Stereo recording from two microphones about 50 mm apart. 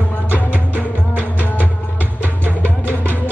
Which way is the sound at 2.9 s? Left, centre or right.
Left.